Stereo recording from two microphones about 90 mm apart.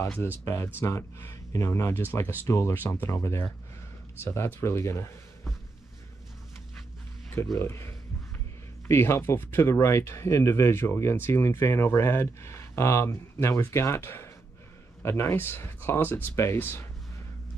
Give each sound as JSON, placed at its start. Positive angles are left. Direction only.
{"t": 0.7, "sound": "speech", "side_deg": 30}
{"t": 7.5, "sound": "speech", "side_deg": 30}